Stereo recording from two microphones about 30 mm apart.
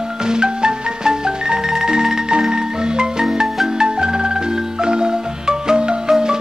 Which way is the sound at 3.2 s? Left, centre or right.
Centre.